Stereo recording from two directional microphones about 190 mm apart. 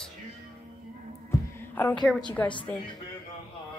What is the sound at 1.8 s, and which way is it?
Speech, 10° left (ahead or behind).